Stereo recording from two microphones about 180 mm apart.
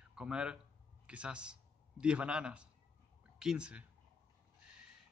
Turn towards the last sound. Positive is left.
turn(degrees=-5)  # may be behind; listen again after turning